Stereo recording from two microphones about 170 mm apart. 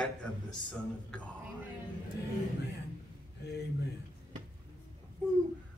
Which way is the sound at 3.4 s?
80° left.